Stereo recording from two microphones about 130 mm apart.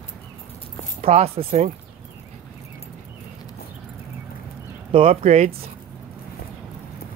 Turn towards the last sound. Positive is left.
turn(degrees=-60)  # may be behind; listen again after turning